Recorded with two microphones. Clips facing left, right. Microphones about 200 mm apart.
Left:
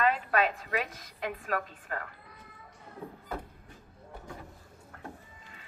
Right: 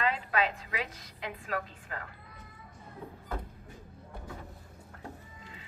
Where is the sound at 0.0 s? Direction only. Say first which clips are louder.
Left 3 dB; 50° left (ahead or behind).